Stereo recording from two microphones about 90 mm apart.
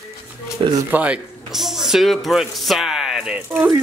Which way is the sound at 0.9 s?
15° right (ahead or behind).